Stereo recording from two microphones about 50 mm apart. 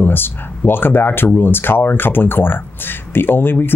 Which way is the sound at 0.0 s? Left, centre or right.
Left.